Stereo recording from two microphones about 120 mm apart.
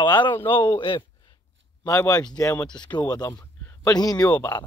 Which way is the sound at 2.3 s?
25° left (ahead or behind).